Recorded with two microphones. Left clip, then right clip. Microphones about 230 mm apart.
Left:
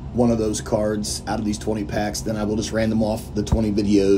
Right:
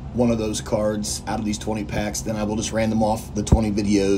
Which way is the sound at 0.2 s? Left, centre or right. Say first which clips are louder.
Left 2 dB; centre.